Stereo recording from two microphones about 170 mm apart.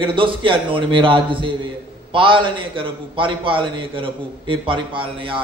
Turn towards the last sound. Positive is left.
turn(degrees=-30)  # may be behind; listen again after turning